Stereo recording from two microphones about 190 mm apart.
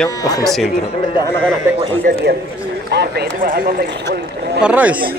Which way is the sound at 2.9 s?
60° right (ahead or behind).